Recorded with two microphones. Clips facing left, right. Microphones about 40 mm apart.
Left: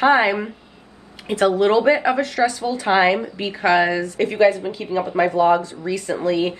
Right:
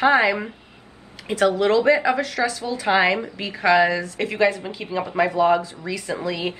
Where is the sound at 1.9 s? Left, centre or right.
Centre.